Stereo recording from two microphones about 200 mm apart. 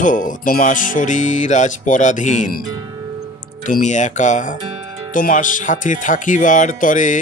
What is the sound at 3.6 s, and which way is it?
Speech, 40° left (ahead or behind).